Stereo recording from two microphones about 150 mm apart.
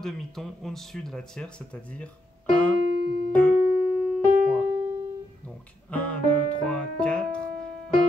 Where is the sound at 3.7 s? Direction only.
50° left (ahead or behind).